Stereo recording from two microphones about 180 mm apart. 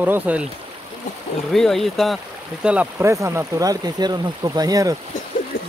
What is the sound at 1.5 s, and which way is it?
Speech, centre (ahead or behind).